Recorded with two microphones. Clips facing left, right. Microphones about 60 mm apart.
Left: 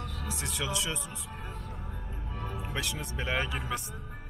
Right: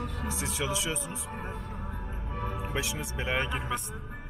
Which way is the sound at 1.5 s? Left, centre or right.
Centre.